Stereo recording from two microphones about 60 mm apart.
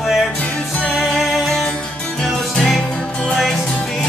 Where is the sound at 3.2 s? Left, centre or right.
Centre.